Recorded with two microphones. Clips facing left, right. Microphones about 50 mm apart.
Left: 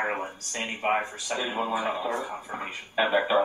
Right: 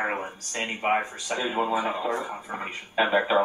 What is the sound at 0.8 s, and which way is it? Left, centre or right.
Speech, right.